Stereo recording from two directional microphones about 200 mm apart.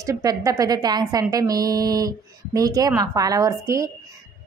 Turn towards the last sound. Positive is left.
turn(degrees=-15)  # may be behind; listen again after turning